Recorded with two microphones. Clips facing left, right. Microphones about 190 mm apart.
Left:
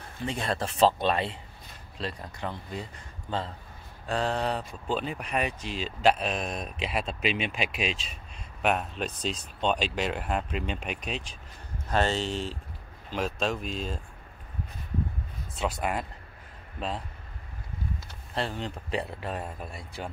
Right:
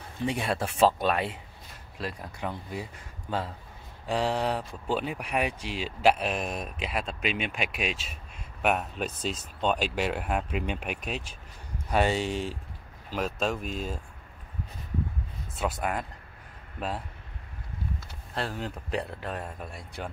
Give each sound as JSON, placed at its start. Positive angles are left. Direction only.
{"t": 0.2, "sound": "speech", "side_deg": -10}
{"t": 7.2, "sound": "speech", "side_deg": -50}
{"t": 7.5, "sound": "speech", "side_deg": 0}
{"t": 15.6, "sound": "speech", "side_deg": 5}
{"t": 18.3, "sound": "speech", "side_deg": 0}